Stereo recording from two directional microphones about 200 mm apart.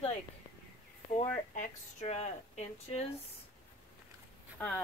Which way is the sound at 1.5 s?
40° left (ahead or behind).